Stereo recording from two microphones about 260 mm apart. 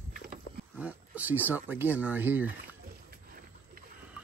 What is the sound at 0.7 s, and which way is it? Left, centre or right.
Speech, centre.